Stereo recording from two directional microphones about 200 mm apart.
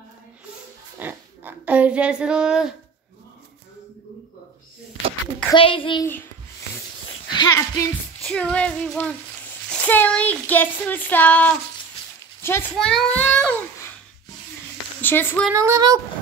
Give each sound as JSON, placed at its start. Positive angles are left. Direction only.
{"t": 0.9, "sound": "a sound", "side_deg": -10}
{"t": 5.5, "sound": "a child's voice", "side_deg": 25}
{"t": 7.3, "sound": "a child's voice", "side_deg": 20}
{"t": 8.2, "sound": "a child's voice", "side_deg": 5}
{"t": 15.0, "sound": "a woman's voice", "side_deg": 10}
{"t": 15.5, "sound": "speech", "side_deg": -15}